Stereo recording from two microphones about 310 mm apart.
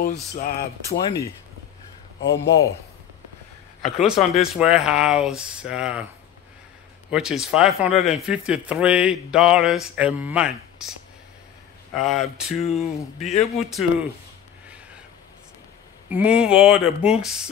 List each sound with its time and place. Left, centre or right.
0.3 s speech: left
2.2 s a man's voice: centre
4.0 s speech: centre
7.1 s speech: centre
13.2 s speech: left
13.7 s speech: centre
16.1 s speech: centre